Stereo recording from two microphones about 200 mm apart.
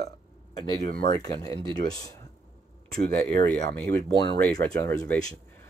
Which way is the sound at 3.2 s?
5° left (ahead or behind).